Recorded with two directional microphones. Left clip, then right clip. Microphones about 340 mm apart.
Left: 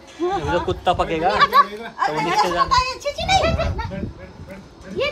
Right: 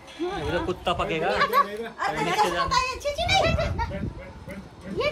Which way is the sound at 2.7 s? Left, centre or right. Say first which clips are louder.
Left 5 dB; centre.